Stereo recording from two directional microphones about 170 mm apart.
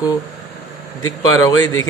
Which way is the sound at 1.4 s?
20° left (ahead or behind).